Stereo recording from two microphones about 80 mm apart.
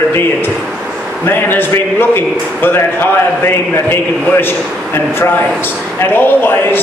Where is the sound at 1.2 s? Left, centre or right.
Left.